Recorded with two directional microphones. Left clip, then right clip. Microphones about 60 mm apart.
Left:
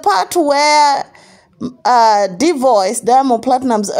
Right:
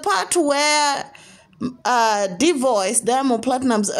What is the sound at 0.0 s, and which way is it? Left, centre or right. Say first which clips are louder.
Speech: left 6 dB; left.